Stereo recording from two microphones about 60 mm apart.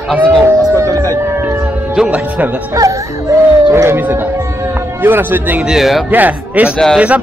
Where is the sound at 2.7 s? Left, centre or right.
Right.